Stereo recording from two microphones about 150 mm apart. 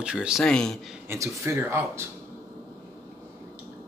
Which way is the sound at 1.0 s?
20° right (ahead or behind).